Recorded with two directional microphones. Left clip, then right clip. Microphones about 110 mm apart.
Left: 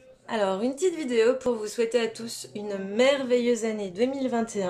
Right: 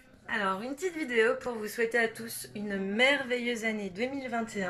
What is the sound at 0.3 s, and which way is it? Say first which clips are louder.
Speech: left 5 dB; 40° left (ahead or behind).